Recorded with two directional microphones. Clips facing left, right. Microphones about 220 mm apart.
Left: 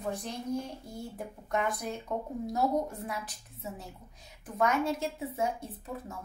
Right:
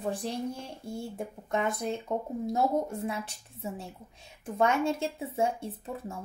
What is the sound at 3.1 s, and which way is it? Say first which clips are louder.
Speech: right 3 dB; 30° right (ahead or behind).